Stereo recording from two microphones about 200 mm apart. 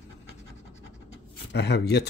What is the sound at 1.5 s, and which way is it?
Speech, 55° left (ahead or behind).